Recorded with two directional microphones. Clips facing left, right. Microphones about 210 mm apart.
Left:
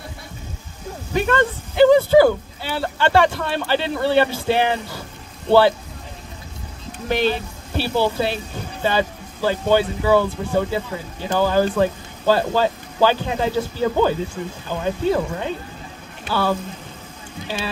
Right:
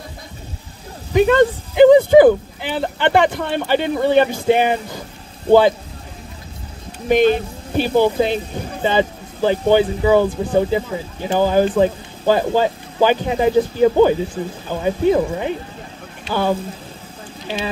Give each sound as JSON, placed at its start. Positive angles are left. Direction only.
{"t": 1.1, "sound": "speech", "side_deg": -15}
{"t": 7.1, "sound": "speech", "side_deg": -15}